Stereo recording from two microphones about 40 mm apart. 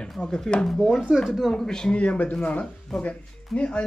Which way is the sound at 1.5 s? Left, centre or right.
Centre.